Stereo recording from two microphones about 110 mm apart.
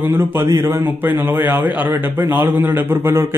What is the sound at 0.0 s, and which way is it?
A man's voice, 20° right (ahead or behind).